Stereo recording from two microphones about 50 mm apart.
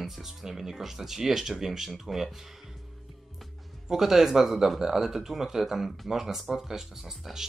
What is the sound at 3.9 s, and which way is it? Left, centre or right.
Speech, centre.